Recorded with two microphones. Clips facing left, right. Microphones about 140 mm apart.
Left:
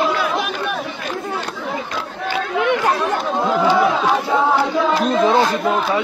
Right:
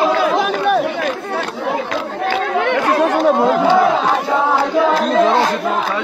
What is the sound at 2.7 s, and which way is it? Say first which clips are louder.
Chatter: right 4 dB; 70° right (ahead or behind).